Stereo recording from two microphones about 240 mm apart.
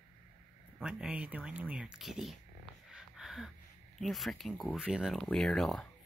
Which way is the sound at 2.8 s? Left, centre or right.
Centre.